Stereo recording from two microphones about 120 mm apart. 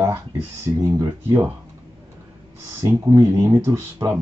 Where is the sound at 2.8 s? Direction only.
25° right (ahead or behind).